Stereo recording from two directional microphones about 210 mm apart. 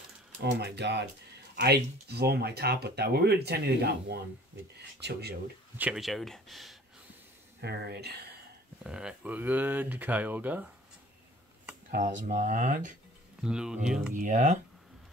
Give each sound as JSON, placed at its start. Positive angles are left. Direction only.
{"t": 0.4, "sound": "speech", "side_deg": -50}
{"t": 5.8, "sound": "speech", "side_deg": -5}
{"t": 7.6, "sound": "speech", "side_deg": -50}
{"t": 8.8, "sound": "speech", "side_deg": -5}
{"t": 11.9, "sound": "speech", "side_deg": -40}
{"t": 13.4, "sound": "speech", "side_deg": -5}
{"t": 14.1, "sound": "speech", "side_deg": -35}